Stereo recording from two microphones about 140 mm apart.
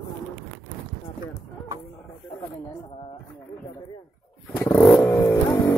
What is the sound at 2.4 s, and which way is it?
Speech, 40° left (ahead or behind).